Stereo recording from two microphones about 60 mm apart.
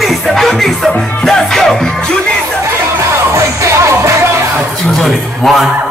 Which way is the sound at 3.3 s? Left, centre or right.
Right.